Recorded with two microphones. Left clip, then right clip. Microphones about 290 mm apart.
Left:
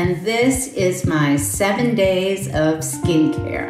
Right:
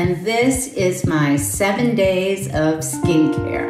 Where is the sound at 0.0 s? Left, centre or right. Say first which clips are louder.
Even; centre.